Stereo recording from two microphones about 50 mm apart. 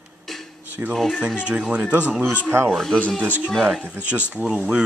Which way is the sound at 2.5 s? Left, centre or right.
Right.